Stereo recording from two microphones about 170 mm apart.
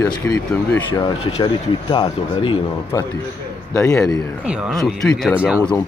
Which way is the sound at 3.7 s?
15° left (ahead or behind).